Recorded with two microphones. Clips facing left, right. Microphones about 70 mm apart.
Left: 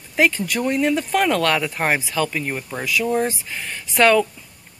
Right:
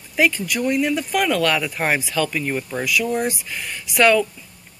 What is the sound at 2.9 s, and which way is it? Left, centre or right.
Speech, left.